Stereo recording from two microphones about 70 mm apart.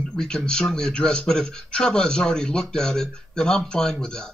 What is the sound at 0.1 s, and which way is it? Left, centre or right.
Speech, centre.